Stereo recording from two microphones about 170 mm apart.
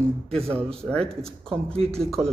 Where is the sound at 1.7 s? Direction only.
35° right (ahead or behind).